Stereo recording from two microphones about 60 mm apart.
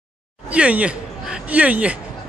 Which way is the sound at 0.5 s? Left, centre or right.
Right.